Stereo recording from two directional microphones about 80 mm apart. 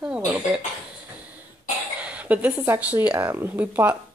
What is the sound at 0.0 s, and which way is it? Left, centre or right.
Cough, centre.